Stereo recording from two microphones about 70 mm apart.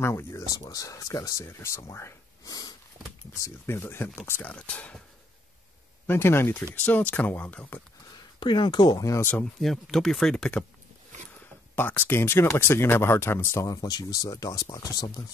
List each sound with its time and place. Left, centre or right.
0.0 s speech: left
4.5 s speech: centre
6.0 s speech: left
8.4 s speech: left
9.4 s speech: centre
11.7 s speech: left
13.7 s speech: left